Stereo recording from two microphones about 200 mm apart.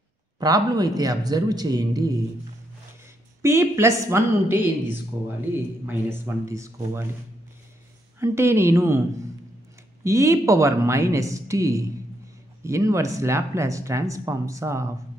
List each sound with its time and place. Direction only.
0.4 s a man's voice: 20° right (ahead or behind)
3.4 s speech: 15° right (ahead or behind)
8.2 s speech: 15° right (ahead or behind)